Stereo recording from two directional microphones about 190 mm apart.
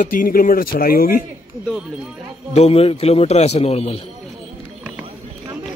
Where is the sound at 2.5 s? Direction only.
35° left (ahead or behind).